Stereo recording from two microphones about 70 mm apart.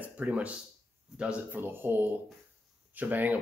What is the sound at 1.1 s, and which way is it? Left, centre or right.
Speech, centre.